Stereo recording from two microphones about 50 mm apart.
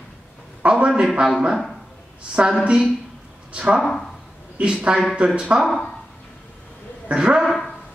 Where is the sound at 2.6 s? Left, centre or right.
Centre.